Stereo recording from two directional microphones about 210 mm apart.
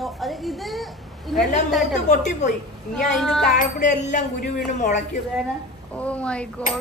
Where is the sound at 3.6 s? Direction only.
35° left (ahead or behind).